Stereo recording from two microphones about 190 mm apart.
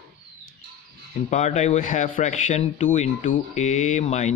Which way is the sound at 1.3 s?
35° left (ahead or behind).